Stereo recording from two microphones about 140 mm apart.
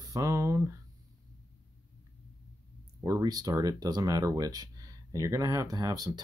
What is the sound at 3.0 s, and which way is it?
Speech, 25° right (ahead or behind).